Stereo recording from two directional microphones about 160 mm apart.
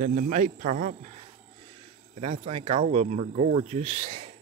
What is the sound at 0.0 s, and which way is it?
Speech, 50° right (ahead or behind).